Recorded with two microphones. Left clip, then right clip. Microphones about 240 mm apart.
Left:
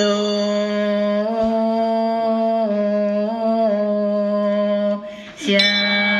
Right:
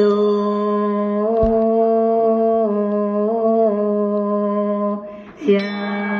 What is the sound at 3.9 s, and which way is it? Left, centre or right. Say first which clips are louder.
Humming: even; left.